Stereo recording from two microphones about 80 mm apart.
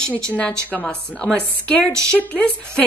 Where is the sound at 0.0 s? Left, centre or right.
Centre.